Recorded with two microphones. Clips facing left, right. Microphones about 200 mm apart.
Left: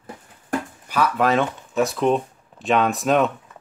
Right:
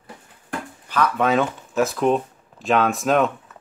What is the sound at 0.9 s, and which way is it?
Speech, 5° left (ahead or behind).